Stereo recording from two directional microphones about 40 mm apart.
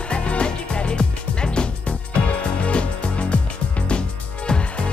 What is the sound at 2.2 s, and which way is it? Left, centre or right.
Music, left.